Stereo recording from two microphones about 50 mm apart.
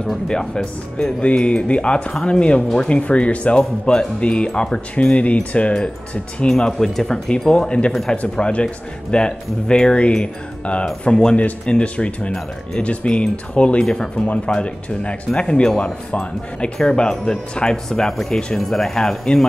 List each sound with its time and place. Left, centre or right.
0.0 s speech: centre
1.2 s speech: left
6.8 s speech: centre